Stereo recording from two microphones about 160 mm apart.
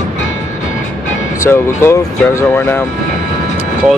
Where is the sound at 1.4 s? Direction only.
15° left (ahead or behind).